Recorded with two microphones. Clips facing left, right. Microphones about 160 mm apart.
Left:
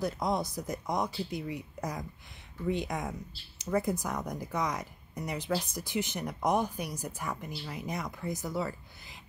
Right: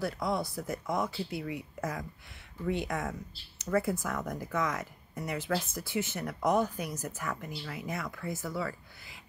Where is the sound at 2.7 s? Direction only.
15° left (ahead or behind).